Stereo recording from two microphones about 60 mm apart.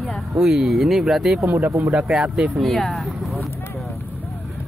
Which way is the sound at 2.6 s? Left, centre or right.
Centre.